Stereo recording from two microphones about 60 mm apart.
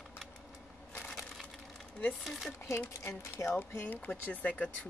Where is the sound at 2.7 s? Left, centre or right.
Left.